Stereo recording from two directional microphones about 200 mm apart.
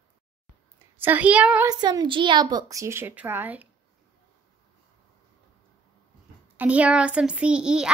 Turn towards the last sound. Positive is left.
turn(degrees=-5)  # may be behind; listen again after turning